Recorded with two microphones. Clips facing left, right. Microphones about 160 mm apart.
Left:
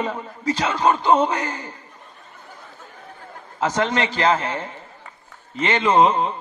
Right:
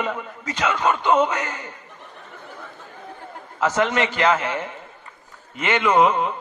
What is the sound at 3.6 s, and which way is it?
A man's voice, 30° left (ahead or behind).